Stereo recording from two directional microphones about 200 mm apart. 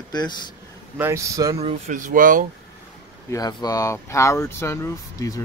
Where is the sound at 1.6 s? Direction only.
35° right (ahead or behind).